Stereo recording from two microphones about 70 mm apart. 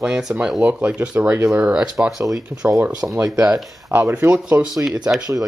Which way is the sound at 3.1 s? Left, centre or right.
Right.